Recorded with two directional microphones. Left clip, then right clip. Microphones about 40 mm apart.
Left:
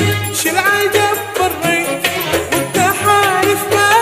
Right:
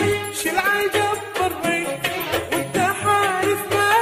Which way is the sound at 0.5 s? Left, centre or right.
Left.